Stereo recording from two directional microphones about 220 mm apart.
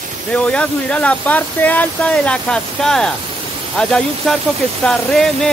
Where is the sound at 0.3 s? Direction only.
5° left (ahead or behind).